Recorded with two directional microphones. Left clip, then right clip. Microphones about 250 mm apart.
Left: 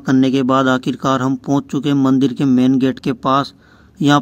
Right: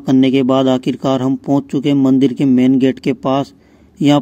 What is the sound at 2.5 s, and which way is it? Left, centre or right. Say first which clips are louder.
Speech: right 1 dB; left.